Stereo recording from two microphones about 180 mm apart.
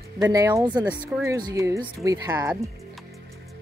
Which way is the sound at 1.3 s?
20° right (ahead or behind).